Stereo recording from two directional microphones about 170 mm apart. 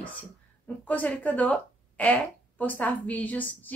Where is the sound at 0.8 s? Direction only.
10° left (ahead or behind).